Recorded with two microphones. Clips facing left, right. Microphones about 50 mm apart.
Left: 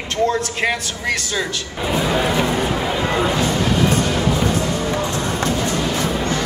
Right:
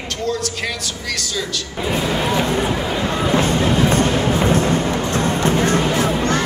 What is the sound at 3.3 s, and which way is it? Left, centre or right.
Music, right.